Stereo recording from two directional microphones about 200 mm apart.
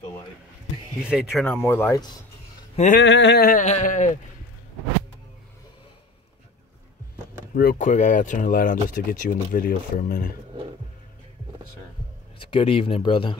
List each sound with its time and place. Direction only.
1.0 s speech: centre (ahead or behind); by 2.0 s 15° left (ahead or behind)
2.7 s speech: 35° left (ahead or behind)
3.0 s speech: 65° left (ahead or behind); by 4.2 s 40° left (ahead or behind)
7.5 s speech: 45° left (ahead or behind)
12.4 s speech: 25° left (ahead or behind)